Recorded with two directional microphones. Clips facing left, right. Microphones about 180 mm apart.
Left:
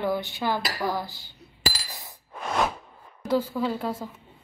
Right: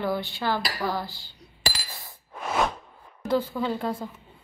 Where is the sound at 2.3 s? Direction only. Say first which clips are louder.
Even; centre (ahead or behind).